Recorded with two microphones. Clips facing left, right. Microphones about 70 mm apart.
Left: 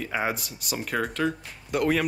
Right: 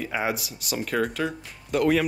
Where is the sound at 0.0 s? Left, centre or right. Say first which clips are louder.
Right 1 dB; centre.